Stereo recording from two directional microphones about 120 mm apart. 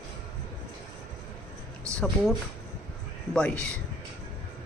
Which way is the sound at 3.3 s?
5° left (ahead or behind).